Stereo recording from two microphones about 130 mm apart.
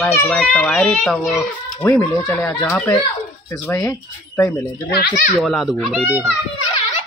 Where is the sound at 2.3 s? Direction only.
10° left (ahead or behind).